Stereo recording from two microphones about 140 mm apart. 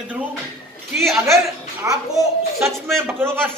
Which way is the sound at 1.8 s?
20° right (ahead or behind).